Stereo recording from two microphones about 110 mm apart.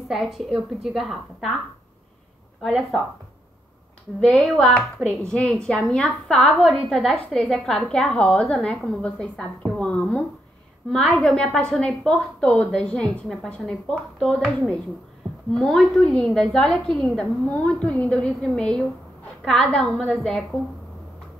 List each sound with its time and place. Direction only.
0.1 s a woman's voice: centre (ahead or behind)
2.6 s a woman's voice: centre (ahead or behind)
4.3 s a woman's voice: 10° left (ahead or behind)
15.5 s a woman's voice: 5° left (ahead or behind)